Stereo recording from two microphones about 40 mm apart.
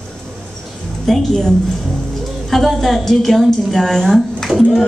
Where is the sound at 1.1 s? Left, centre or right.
Centre.